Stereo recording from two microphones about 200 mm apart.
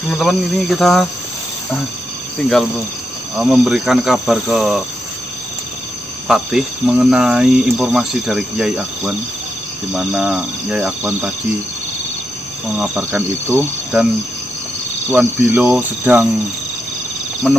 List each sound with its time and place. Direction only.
0.1 s speech: centre (ahead or behind)
3.3 s speech: 5° right (ahead or behind)
6.2 s speech: centre (ahead or behind)
12.7 s speech: 5° right (ahead or behind)
15.0 s speech: 10° right (ahead or behind)
17.4 s speech: centre (ahead or behind)